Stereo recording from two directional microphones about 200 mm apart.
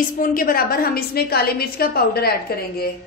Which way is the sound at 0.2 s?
45° left (ahead or behind).